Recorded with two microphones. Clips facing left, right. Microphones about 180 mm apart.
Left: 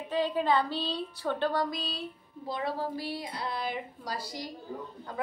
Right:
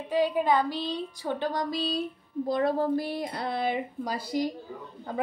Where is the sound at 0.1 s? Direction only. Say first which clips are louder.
Right 3 dB; 10° right (ahead or behind).